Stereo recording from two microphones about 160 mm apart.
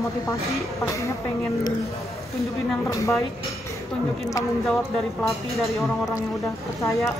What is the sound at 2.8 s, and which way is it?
Speech, 20° left (ahead or behind).